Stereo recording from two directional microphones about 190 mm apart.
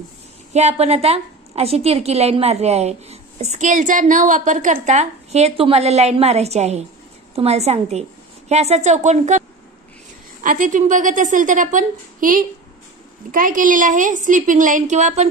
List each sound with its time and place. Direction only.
0.5 s a woman's voice: 35° right (ahead or behind)
10.4 s a woman's voice: 45° right (ahead or behind)